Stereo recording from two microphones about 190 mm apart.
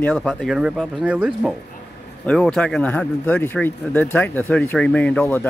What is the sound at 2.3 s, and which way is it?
Speech, 5° left (ahead or behind).